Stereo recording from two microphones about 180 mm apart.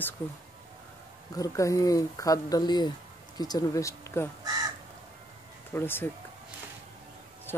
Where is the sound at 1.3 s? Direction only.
20° left (ahead or behind).